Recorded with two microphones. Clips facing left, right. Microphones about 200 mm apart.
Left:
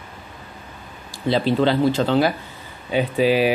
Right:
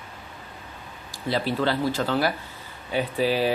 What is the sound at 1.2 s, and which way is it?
Speech, 20° left (ahead or behind).